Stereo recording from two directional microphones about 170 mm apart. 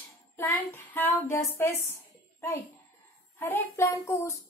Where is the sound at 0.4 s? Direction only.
15° left (ahead or behind).